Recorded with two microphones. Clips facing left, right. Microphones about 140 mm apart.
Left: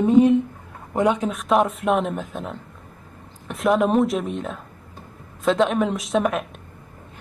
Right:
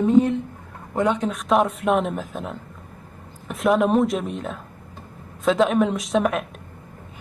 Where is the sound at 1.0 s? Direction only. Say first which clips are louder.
Left 1 dB; 10° left (ahead or behind).